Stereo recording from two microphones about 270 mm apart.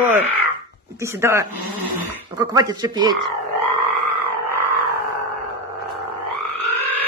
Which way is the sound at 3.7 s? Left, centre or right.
Right.